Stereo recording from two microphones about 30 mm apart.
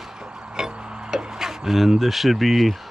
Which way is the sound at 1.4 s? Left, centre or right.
Centre.